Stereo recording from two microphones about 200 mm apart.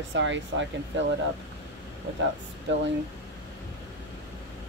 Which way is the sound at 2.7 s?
65° right (ahead or behind).